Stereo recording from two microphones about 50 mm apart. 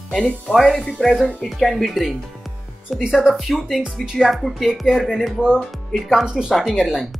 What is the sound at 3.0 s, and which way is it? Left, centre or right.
Speech, centre.